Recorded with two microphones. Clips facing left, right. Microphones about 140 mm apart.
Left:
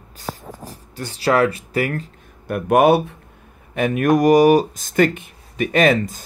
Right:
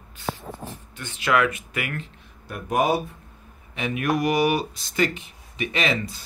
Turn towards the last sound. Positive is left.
turn(degrees=45)  # may be behind; listen again after turning